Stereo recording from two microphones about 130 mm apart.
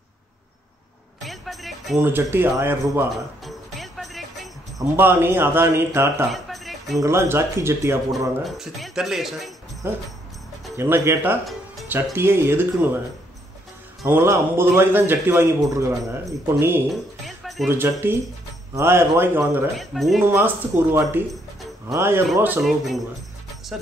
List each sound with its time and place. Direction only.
1.2 s music: centre (ahead or behind)
2.0 s a man's voice: 15° right (ahead or behind)
3.4 s music: centre (ahead or behind)
4.9 s a man's voice: 15° right (ahead or behind)
6.3 s music: centre (ahead or behind)
7.0 s speech: 20° right (ahead or behind)
8.5 s speech: centre (ahead or behind)
10.8 s a man's voice: 15° right (ahead or behind)
14.0 s a man's voice: 20° right (ahead or behind)
16.9 s music: centre (ahead or behind)
17.6 s a man's voice: 15° right (ahead or behind)
19.8 s speech: centre (ahead or behind)
20.2 s a man's voice: 15° right (ahead or behind)
22.6 s speech: centre (ahead or behind)